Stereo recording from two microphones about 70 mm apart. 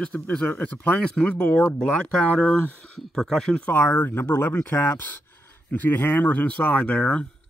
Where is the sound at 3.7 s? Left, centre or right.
Left.